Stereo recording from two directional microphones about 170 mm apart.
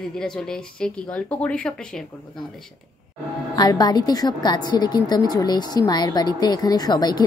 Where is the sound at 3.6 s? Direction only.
20° left (ahead or behind).